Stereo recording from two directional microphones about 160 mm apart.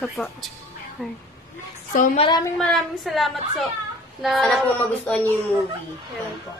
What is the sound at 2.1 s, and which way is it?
Speech, 30° left (ahead or behind).